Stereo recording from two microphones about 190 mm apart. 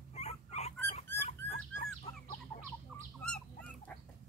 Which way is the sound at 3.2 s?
5° left (ahead or behind).